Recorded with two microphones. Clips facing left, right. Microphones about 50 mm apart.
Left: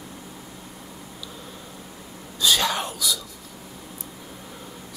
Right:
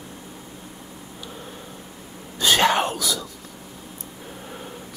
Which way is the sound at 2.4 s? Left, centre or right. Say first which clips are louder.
Right 4 dB; right.